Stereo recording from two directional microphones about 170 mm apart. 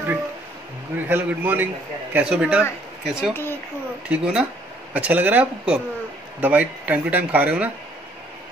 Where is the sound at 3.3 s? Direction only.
15° left (ahead or behind).